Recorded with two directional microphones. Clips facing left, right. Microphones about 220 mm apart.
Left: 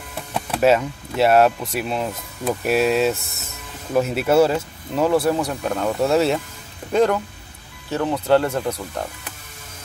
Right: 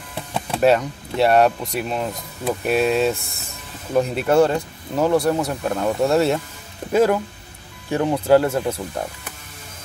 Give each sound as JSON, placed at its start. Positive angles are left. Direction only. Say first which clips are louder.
{"t": 0.6, "sound": "speech", "louder": "even", "side_deg": 0}